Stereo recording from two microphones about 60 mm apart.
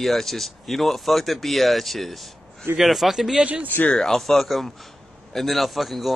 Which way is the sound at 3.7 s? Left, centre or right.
Left.